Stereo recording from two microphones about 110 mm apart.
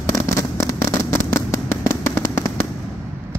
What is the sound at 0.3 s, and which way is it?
Fireworks, 25° left (ahead or behind).